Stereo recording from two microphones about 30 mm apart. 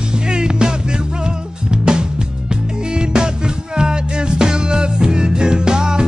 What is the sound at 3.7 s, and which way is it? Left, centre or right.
Music, right.